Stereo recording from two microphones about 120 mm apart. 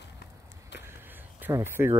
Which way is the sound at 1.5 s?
20° right (ahead or behind).